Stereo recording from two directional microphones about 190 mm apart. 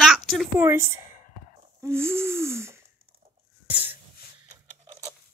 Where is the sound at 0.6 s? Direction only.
15° right (ahead or behind).